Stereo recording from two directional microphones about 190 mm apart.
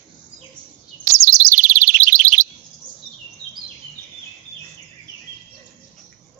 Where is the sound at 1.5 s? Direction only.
45° right (ahead or behind).